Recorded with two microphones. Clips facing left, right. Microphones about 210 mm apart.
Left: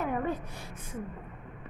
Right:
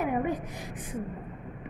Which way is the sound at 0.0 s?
15° right (ahead or behind).